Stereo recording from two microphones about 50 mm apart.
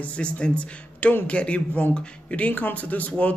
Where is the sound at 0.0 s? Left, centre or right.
Left.